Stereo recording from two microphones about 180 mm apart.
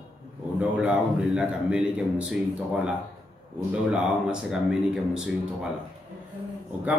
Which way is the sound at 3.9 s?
5° right (ahead or behind).